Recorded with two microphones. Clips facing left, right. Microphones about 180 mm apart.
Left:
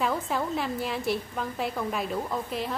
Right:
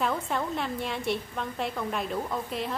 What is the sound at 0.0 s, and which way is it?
A woman's voice, 5° left (ahead or behind).